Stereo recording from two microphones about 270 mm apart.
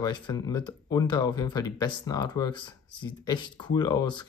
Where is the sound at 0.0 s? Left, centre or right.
Centre.